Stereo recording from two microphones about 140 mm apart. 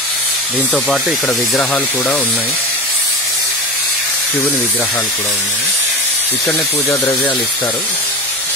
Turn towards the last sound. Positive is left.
turn(degrees=15)  # may be behind; listen again after turning